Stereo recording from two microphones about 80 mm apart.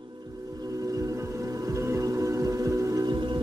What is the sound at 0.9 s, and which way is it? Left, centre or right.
Music, right.